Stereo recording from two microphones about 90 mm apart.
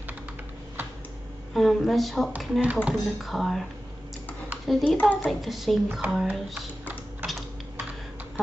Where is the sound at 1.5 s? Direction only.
Centre (ahead or behind).